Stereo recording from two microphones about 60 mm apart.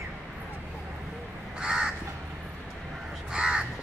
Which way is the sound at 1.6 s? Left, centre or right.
Centre.